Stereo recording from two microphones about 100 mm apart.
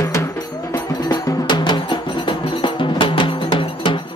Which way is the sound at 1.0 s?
50° left (ahead or behind).